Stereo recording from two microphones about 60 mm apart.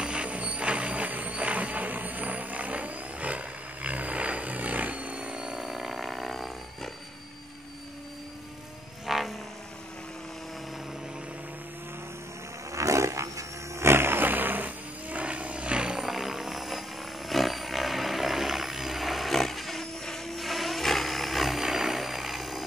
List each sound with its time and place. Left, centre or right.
0.0 s a sound: centre
9.0 s frog: centre
12.7 s roaring cats: right
13.8 s vehicle: right; by 16.0 s centre
16.0 s helicopter: centre